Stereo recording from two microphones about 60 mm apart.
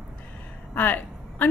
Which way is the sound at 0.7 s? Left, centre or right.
Left.